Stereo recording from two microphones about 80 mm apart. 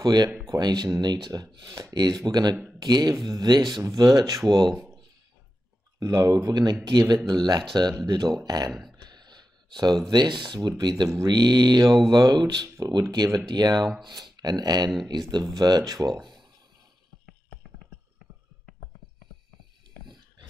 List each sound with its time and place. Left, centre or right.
0.0 s speech: right
3.8 s speech: right
4.5 s speech: right
5.9 s speech: right
8.1 s speech: right
8.9 s a sound: right
10.0 s speech: right
12.6 s speech: right
13.1 s speech: right
16.2 s a sound: right